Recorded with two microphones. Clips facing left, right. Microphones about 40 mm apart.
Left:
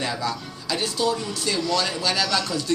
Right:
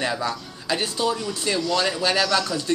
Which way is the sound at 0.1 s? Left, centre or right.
Centre.